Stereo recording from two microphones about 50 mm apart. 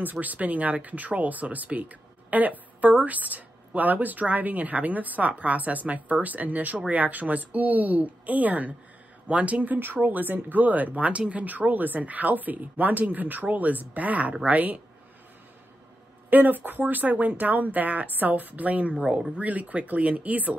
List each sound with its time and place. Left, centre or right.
0.0 s speech: right
16.3 s speech: right